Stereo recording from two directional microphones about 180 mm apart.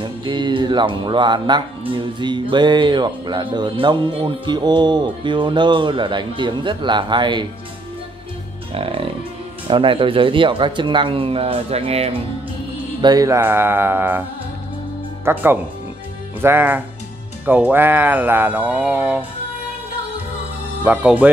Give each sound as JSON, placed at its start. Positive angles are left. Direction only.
{"t": 0.0, "sound": "speech", "side_deg": -25}
{"t": 8.7, "sound": "speech", "side_deg": -30}
{"t": 13.0, "sound": "speech", "side_deg": -20}
{"t": 15.2, "sound": "speech", "side_deg": -10}
{"t": 20.8, "sound": "speech", "side_deg": -10}